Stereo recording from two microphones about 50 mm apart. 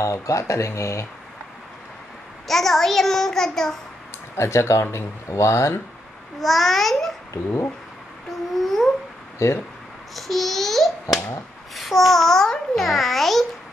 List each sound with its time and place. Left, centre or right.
0.0 s speech: left
2.4 s a child's voice: centre
4.4 s speech: left
6.4 s a child's voice: centre
8.6 s a sound: centre
9.4 s speech: left
10.1 s a child's voice: centre